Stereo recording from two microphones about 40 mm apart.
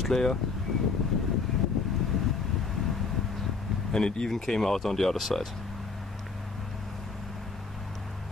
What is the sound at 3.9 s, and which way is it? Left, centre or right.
Speech, centre.